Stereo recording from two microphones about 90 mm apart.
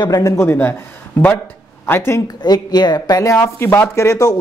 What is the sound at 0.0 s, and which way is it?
Speech, 45° left (ahead or behind).